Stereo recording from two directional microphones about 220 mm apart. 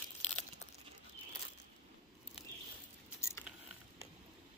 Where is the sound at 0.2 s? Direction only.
30° left (ahead or behind).